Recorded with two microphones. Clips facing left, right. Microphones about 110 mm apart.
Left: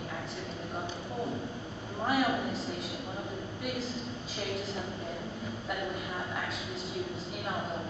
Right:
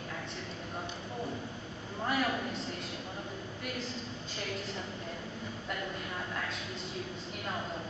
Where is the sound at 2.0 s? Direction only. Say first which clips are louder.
Left 3 dB; 5° left (ahead or behind).